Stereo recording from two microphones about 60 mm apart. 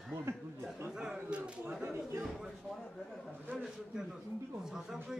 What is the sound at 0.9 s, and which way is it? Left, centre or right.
Speech, centre.